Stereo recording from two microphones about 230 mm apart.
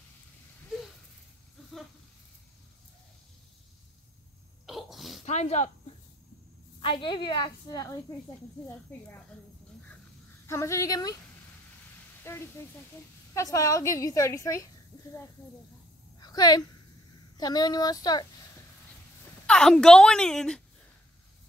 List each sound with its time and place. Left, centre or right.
4.6 s sneeze: centre
5.2 s snake: left
6.8 s a woman's voice: left
10.4 s a woman's voice: centre
12.2 s a woman's voice: centre
16.2 s a sound: centre
17.4 s a woman's voice: centre
19.4 s speech: centre